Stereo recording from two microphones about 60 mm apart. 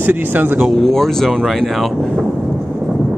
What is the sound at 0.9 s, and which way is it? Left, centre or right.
Speech, centre.